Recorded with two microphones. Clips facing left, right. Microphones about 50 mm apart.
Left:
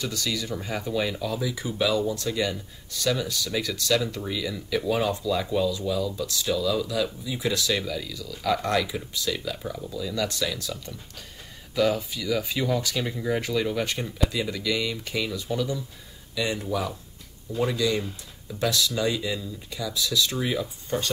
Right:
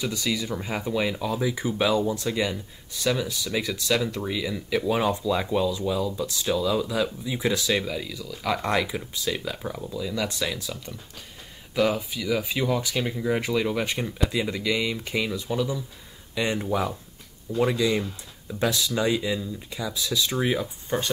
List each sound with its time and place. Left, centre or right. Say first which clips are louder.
0.0 s speech: right 2 dB; centre
16.3 s speech: right 2 dB; right
17.6 s speech: right 2 dB; right